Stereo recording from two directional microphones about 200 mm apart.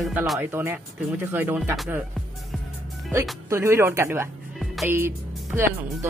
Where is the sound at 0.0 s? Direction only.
5° right (ahead or behind).